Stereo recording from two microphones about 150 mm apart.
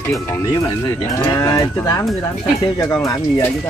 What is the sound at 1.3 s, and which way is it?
Speech, 20° left (ahead or behind).